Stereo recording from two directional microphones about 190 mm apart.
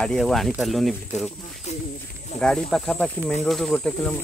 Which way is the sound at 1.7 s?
35° left (ahead or behind).